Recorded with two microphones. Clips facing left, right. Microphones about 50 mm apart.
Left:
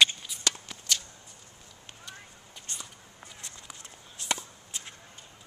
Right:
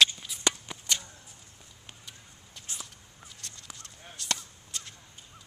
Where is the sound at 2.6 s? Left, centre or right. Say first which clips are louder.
Even; centre.